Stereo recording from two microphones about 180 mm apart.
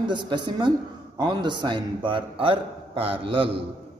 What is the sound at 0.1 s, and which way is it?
A man's voice, 25° right (ahead or behind).